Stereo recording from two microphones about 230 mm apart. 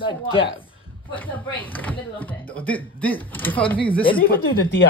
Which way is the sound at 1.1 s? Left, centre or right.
Centre.